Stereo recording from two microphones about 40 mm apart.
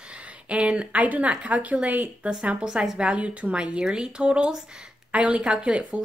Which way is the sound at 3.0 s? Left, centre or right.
Right.